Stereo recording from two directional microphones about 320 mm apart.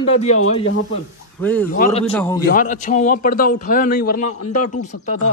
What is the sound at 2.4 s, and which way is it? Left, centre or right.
A man's voice, left.